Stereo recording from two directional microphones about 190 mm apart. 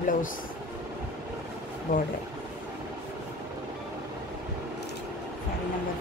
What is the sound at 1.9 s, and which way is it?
Speech, 50° left (ahead or behind).